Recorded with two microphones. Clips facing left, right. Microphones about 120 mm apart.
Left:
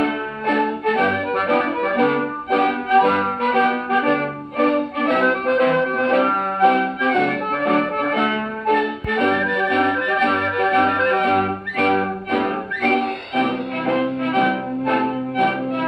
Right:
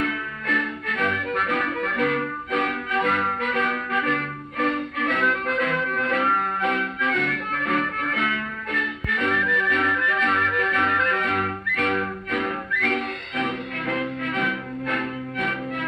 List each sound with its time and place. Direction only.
0.0 s music: 50° left (ahead or behind)
5.6 s accordion: 55° left (ahead or behind)
8.0 s music: 50° left (ahead or behind)